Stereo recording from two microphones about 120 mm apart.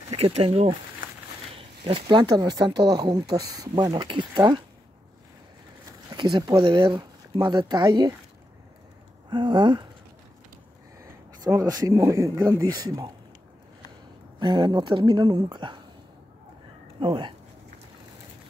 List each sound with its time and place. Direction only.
0.1 s speech: 55° right (ahead or behind)
1.9 s speech: 45° right (ahead or behind)
6.1 s speech: 40° right (ahead or behind)
9.3 s speech: 40° right (ahead or behind)
11.0 s speech: 30° right (ahead or behind)
14.4 s speech: 35° right (ahead or behind)
17.0 s speech: 45° right (ahead or behind)